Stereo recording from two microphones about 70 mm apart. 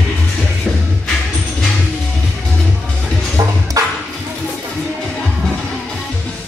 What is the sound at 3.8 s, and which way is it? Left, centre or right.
Music, right.